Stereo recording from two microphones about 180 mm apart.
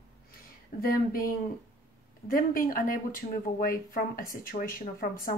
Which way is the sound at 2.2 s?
50° left (ahead or behind).